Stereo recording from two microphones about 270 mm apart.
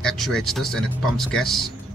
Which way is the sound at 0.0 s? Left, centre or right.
Centre.